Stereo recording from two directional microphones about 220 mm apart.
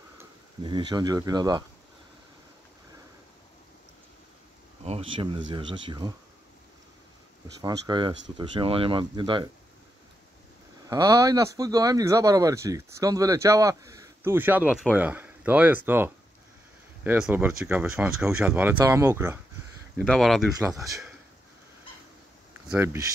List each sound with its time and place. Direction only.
0.7 s speech: 20° right (ahead or behind)
4.8 s speech: 25° right (ahead or behind)
7.6 s speech: 15° right (ahead or behind)
10.9 s speech: 15° right (ahead or behind)
20.0 s speech: centre (ahead or behind)
22.7 s speech: 10° right (ahead or behind)